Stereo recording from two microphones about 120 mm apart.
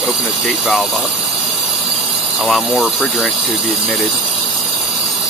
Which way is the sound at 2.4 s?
5° right (ahead or behind).